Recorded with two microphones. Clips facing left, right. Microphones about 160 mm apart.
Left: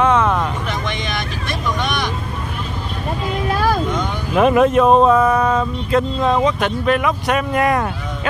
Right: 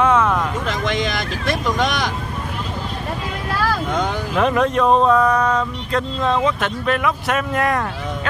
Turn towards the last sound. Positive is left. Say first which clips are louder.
# left 3 dB
turn(degrees=5)  # may be behind; listen again after turning